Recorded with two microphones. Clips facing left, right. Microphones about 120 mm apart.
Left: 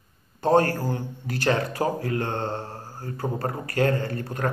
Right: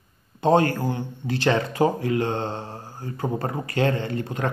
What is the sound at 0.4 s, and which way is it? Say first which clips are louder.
Speech: right 1 dB; 20° right (ahead or behind).